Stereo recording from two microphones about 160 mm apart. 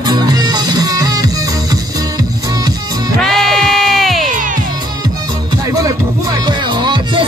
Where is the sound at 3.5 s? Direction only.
Centre (ahead or behind).